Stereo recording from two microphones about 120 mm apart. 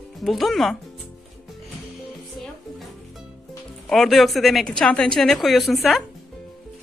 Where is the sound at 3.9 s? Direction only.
Centre (ahead or behind).